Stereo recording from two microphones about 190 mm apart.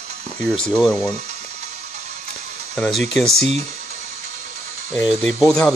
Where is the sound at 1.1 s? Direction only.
35° right (ahead or behind).